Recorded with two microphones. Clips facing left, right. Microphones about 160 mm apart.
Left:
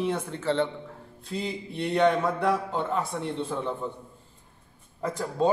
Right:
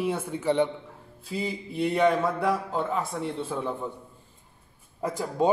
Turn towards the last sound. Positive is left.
turn(degrees=-10)  # may be behind; listen again after turning